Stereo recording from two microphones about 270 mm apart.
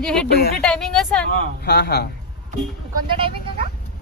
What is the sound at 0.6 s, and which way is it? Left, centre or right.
Speech, centre.